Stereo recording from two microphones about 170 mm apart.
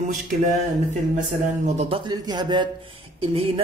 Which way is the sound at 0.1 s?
40° right (ahead or behind).